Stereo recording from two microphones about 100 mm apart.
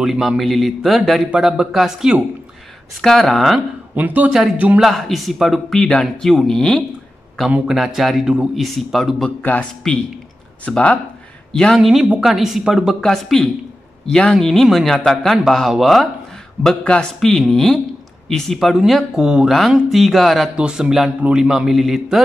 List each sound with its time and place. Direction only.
0.0 s a man's voice: 5° right (ahead or behind)
3.9 s a man's voice: 15° right (ahead or behind)
4.8 s a man's voice: centre (ahead or behind)
7.4 s a man's voice: 5° right (ahead or behind)
9.4 s a man's voice: 15° left (ahead or behind); by 16.1 s centre (ahead or behind)
16.6 s a man's voice: 10° left (ahead or behind)